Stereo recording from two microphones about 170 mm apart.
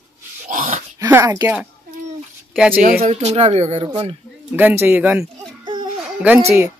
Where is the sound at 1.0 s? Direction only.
15° right (ahead or behind).